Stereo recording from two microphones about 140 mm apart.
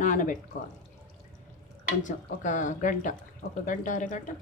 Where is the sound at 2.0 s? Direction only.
65° left (ahead or behind).